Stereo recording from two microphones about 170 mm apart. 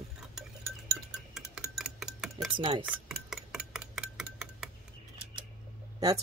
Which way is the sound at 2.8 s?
10° right (ahead or behind).